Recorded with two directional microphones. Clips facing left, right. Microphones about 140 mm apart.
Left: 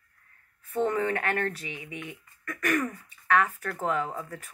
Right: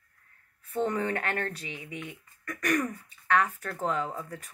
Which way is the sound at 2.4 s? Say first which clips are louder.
Even; 15° right (ahead or behind).